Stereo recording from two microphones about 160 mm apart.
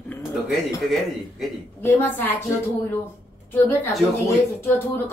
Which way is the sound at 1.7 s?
15° left (ahead or behind).